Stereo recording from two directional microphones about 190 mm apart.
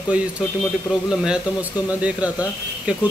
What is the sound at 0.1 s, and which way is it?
Speech, 5° right (ahead or behind).